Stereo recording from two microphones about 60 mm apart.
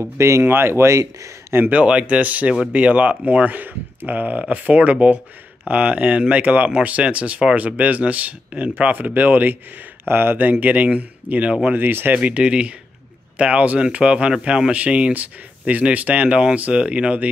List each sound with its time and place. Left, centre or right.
0.0 s speech: right
1.7 s speech: right